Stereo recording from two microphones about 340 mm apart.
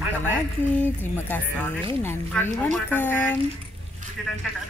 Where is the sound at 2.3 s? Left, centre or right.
Centre.